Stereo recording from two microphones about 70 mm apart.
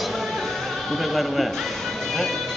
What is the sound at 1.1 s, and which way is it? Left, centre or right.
Speech, centre.